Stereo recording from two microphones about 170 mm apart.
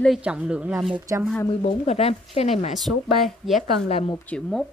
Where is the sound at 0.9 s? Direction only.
20° right (ahead or behind).